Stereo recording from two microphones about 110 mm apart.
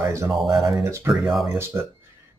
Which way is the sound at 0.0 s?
25° right (ahead or behind).